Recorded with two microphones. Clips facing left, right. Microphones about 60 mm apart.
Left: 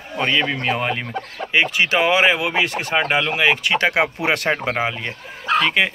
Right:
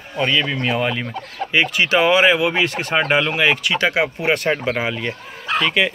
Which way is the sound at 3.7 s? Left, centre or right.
Left.